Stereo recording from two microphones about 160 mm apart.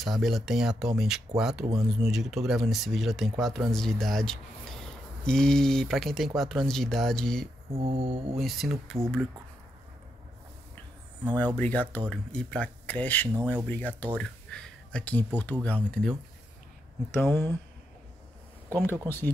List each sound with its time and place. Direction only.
0.0 s speech: centre (ahead or behind)
7.7 s a sound: 35° right (ahead or behind)
8.4 s speech: centre (ahead or behind)
11.3 s speech: 10° left (ahead or behind)
19.0 s speech: 15° left (ahead or behind)